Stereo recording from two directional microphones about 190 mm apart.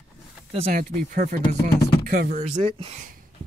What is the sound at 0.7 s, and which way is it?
Speech, 45° right (ahead or behind).